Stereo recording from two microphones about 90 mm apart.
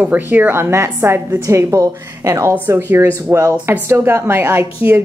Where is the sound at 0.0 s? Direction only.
20° right (ahead or behind).